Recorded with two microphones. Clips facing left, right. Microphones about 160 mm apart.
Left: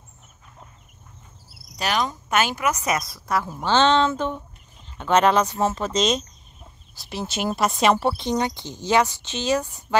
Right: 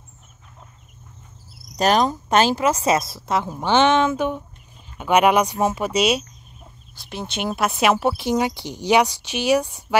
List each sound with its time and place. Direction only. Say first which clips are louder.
1.8 s speech: right 7 dB; 40° right (ahead or behind); by 6.2 s 10° right (ahead or behind)
7.0 s speech: even; 5° left (ahead or behind)